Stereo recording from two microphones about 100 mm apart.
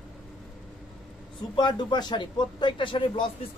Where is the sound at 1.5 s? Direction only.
50° left (ahead or behind).